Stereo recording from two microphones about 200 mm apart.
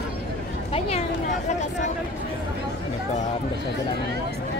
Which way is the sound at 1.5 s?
35° left (ahead or behind).